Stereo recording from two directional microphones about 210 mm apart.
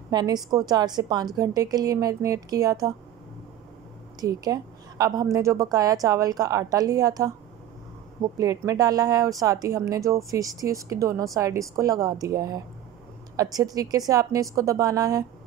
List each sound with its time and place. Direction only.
0.1 s a woman's voice: 20° right (ahead or behind)
4.2 s a woman's voice: 15° right (ahead or behind)